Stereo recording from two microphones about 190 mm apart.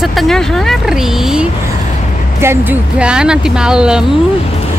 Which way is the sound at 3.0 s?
5° right (ahead or behind).